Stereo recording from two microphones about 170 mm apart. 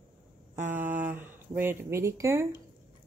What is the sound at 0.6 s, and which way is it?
Speech, 10° right (ahead or behind).